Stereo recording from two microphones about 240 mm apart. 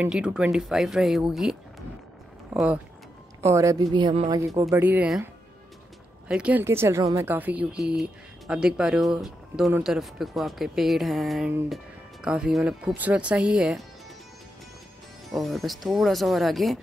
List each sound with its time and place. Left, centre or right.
0.0 s speech: centre; by 4.4 s right
4.6 s speech: centre
15.3 s speech: centre